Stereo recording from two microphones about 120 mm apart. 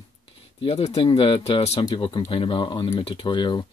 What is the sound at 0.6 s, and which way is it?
Speech, 50° left (ahead or behind).